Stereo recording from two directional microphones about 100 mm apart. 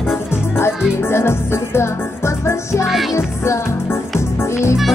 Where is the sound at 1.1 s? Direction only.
25° left (ahead or behind).